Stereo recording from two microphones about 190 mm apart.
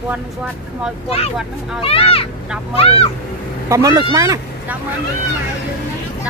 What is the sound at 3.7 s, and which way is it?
Speech, 20° right (ahead or behind).